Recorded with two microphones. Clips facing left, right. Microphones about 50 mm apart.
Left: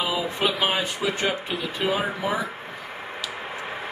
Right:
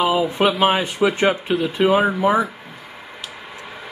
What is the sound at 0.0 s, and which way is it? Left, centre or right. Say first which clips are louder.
Speech: right 7 dB; right.